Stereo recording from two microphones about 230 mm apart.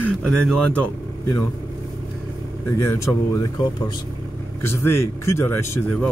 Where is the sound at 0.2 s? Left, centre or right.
Centre.